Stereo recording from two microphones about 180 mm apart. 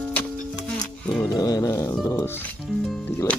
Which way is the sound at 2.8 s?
Centre (ahead or behind).